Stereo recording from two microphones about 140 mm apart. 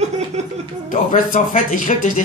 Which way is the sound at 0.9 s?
70° left (ahead or behind).